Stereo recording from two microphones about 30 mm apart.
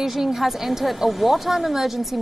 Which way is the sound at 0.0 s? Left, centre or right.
Centre.